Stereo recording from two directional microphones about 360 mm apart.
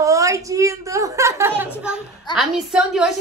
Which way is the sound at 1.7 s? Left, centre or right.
Centre.